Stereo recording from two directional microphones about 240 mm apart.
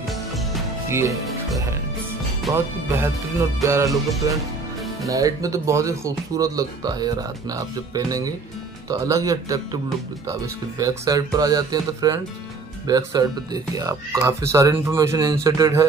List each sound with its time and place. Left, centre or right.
0.1 s music: centre
0.8 s speech: centre
2.4 s speech: centre
3.9 s music: centre
5.0 s speech: centre